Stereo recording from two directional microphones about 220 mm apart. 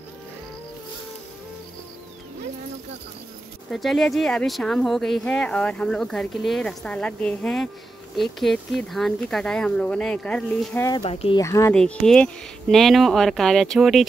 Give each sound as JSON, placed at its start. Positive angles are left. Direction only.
{"t": 3.7, "sound": "speech", "side_deg": 0}
{"t": 11.0, "sound": "speech", "side_deg": 25}
{"t": 11.4, "sound": "speech", "side_deg": 15}